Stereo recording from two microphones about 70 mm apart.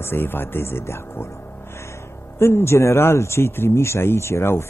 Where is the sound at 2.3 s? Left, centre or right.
Left.